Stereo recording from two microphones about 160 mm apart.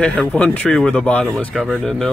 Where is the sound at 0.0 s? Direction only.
5° left (ahead or behind).